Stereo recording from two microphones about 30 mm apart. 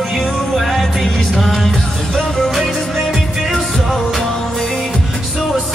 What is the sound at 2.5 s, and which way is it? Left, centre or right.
Music, centre.